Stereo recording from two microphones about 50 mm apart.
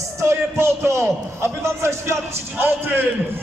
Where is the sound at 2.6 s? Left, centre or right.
Right.